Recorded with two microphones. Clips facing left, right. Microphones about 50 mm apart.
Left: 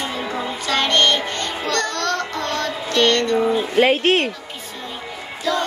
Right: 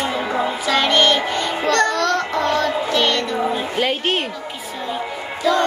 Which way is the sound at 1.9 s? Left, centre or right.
Centre.